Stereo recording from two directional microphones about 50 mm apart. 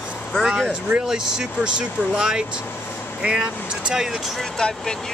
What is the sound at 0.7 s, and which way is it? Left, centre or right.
Speech, right.